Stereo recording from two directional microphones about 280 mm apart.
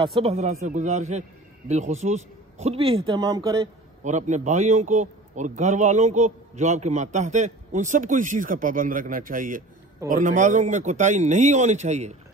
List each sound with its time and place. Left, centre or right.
0.0 s a man's voice: right
4.0 s a man's voice: right